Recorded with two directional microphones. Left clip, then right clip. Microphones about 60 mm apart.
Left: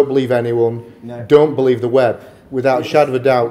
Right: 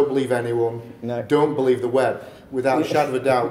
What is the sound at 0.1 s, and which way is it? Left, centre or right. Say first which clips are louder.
Speech: left 6 dB; left.